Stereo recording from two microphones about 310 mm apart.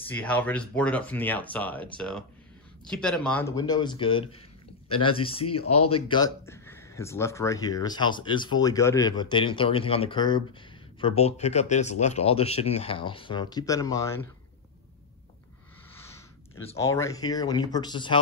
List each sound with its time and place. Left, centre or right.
0.1 s speech: centre
5.6 s speech: left
5.9 s speech: centre
16.6 s speech: centre